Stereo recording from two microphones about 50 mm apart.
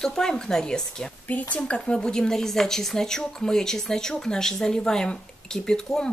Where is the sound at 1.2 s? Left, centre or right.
Left.